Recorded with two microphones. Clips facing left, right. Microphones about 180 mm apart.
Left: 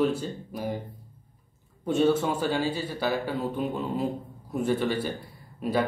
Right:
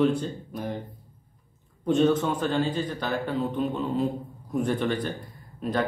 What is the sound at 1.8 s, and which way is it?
Speech, 10° left (ahead or behind).